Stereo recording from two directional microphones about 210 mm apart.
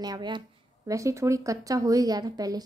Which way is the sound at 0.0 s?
20° right (ahead or behind).